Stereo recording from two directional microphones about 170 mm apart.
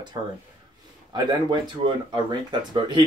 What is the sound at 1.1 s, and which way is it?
Speech, 25° right (ahead or behind).